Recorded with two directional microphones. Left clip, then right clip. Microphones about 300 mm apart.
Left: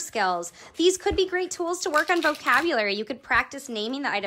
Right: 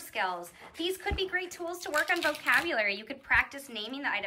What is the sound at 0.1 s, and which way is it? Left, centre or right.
A woman's voice, centre.